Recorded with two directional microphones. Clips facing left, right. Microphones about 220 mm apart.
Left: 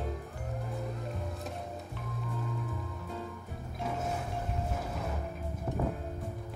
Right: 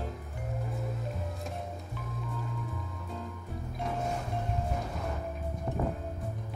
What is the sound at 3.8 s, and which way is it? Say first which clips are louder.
Music: right 1 dB; centre (ahead or behind).